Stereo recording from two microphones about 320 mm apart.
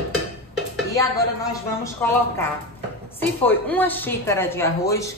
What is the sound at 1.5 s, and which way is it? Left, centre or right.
A woman's voice, centre.